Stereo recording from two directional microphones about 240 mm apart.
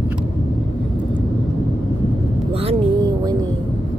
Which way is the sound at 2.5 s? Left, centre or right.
Right.